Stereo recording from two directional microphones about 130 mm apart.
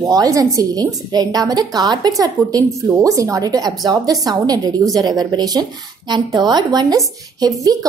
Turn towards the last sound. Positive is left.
turn(degrees=-30)  # may be behind; listen again after turning